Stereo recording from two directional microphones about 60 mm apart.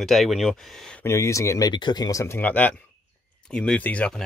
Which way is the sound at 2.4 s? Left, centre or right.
Left.